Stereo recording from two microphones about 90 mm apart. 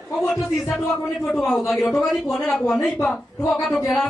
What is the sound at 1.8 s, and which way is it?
Speech, 25° left (ahead or behind).